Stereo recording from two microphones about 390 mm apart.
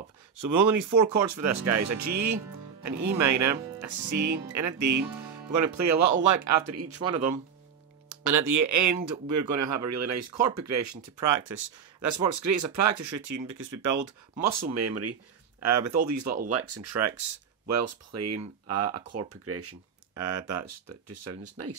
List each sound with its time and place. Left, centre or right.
0.4 s speech: right
8.1 s speech: right
20.2 s speech: right